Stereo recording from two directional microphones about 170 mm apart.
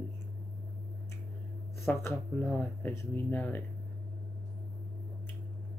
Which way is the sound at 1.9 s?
15° left (ahead or behind).